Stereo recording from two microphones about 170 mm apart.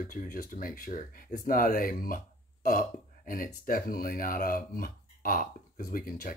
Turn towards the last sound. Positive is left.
turn(degrees=55)  # may be behind; listen again after turning